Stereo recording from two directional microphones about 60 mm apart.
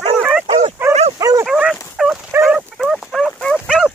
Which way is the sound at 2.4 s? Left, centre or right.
Centre.